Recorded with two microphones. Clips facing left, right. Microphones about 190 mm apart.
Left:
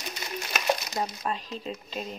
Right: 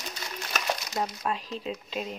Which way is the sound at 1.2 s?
Centre (ahead or behind).